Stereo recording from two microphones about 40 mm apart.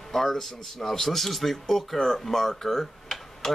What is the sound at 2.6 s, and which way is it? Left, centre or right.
Typing, centre.